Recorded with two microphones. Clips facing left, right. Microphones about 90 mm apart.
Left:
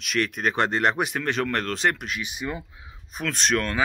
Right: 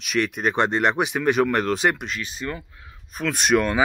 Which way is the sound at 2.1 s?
15° left (ahead or behind).